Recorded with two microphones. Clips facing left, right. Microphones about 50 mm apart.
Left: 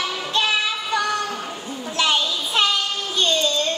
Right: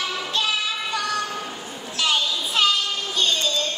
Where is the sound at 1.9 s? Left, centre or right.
Left.